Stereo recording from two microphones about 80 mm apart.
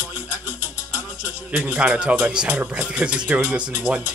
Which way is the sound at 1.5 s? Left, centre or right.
Centre.